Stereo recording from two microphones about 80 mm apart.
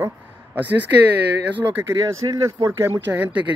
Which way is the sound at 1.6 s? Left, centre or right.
Right.